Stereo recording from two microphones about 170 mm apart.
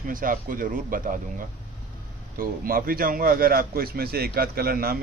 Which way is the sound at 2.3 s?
60° right (ahead or behind).